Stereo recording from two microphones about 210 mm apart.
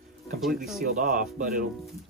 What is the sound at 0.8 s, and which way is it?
Speech, 40° right (ahead or behind).